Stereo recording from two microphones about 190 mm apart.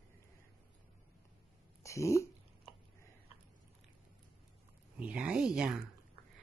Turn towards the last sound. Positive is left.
turn(degrees=-5)  # may be behind; listen again after turning